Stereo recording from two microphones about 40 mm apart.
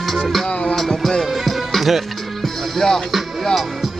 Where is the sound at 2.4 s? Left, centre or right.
Centre.